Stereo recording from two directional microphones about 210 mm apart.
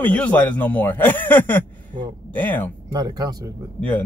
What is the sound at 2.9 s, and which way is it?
Speech, 20° right (ahead or behind).